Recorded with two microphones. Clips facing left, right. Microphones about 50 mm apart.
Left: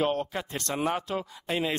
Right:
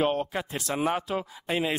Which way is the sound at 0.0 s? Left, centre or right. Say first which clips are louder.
Right 1 dB; centre.